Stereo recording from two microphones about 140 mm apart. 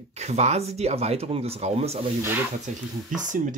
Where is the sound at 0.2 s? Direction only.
50° right (ahead or behind).